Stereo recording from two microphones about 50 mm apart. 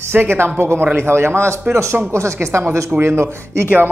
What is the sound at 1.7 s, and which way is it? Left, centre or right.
Speech, right.